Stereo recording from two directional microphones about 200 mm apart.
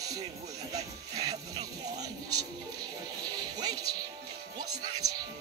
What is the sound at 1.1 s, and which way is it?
Music, 20° right (ahead or behind).